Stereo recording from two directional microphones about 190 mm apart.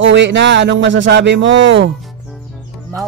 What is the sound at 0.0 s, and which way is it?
Speech, 70° right (ahead or behind).